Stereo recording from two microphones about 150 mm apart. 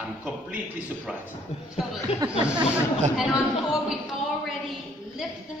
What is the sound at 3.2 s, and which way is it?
A woman's voice, 5° right (ahead or behind).